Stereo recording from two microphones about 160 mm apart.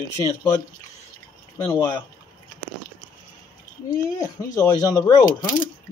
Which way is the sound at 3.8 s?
20° left (ahead or behind).